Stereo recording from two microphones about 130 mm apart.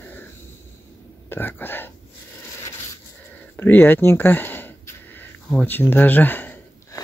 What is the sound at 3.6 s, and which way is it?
Speech, 15° left (ahead or behind).